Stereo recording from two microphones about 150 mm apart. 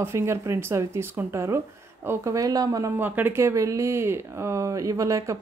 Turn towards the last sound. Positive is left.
turn(degrees=-20)  # may be behind; listen again after turning